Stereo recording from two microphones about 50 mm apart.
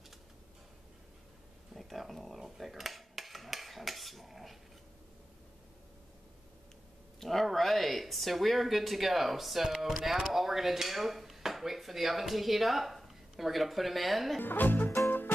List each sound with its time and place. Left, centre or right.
1.7 s dishes: centre
7.2 s speech: centre
14.4 s speech: left
15.0 s music: left